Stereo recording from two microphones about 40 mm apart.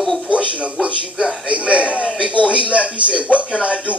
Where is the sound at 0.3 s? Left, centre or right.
Right.